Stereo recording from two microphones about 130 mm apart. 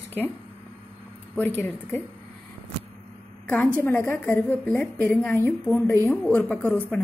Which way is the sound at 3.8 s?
15° left (ahead or behind).